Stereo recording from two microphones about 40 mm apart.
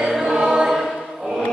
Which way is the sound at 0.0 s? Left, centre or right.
Centre.